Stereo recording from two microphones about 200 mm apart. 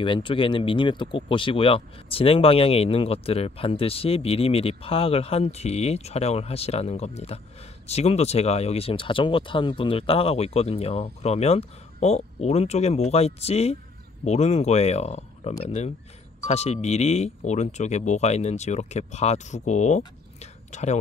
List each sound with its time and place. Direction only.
0.0 s speech: 25° left (ahead or behind)